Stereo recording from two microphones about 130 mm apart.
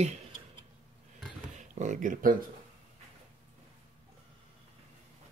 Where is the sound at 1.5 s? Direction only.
70° right (ahead or behind).